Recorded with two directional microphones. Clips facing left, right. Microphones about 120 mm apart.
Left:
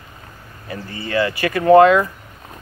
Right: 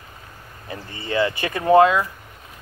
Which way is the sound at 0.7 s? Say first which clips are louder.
Left 2 dB; 25° right (ahead or behind).